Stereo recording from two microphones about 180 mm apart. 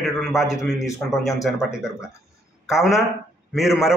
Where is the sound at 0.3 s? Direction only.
15° left (ahead or behind).